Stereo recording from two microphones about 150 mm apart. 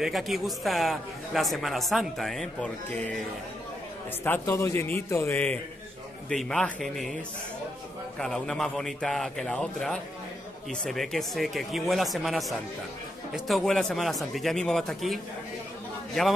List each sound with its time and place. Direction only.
0.0 s a man's voice: centre (ahead or behind)
4.2 s a man's voice: 15° left (ahead or behind)
8.2 s a man's voice: 5° left (ahead or behind)